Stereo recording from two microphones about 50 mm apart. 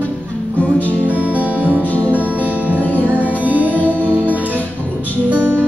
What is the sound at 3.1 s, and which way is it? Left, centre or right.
Music, right.